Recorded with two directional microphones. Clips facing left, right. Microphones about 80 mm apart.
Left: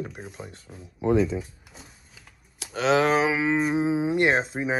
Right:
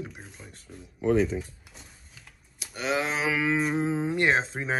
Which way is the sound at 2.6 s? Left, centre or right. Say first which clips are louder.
Left 7 dB; left.